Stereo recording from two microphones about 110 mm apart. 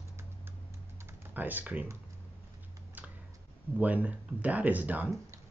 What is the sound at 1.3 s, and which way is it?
Speech, 15° right (ahead or behind).